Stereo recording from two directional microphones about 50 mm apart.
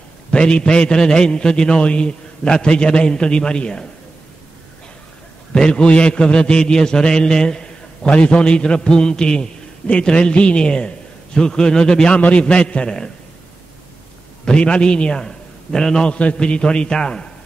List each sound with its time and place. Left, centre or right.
0.3 s a man's voice: centre
5.5 s a man's voice: centre
14.4 s a man's voice: centre